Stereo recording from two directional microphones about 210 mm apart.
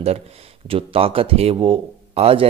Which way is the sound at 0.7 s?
25° right (ahead or behind).